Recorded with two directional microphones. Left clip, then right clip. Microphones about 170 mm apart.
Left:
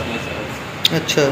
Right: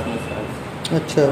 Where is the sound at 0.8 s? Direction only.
25° right (ahead or behind).